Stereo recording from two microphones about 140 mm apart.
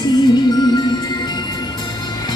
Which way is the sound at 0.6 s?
30° left (ahead or behind).